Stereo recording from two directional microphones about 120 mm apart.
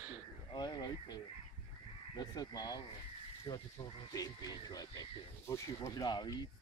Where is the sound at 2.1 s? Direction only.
35° left (ahead or behind).